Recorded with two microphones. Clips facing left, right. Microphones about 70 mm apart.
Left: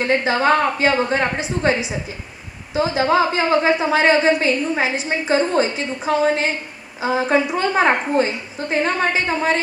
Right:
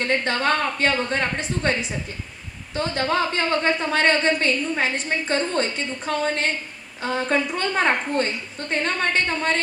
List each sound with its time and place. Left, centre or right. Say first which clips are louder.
0.0 s a woman's voice: left 5 dB; centre